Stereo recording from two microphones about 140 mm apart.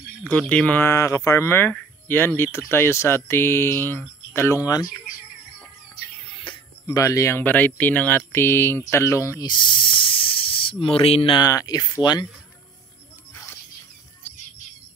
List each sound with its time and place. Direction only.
0.2 s speech: 10° left (ahead or behind)
6.5 s a sound: 35° left (ahead or behind)
6.9 s speech: 20° left (ahead or behind)
9.5 s speech: 35° left (ahead or behind)
11.4 s speech: 25° left (ahead or behind)